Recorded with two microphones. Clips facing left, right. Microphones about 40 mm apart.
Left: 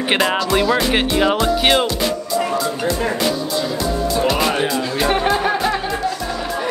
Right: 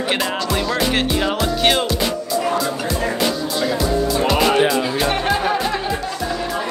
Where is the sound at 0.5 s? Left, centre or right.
Centre.